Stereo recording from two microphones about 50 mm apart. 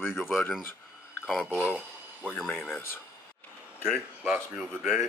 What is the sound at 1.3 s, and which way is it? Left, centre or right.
Speech, centre.